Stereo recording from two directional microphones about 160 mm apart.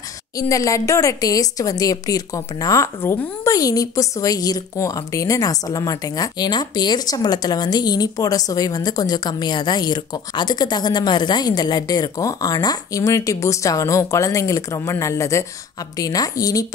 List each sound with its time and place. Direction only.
0.4 s speech: 20° left (ahead or behind)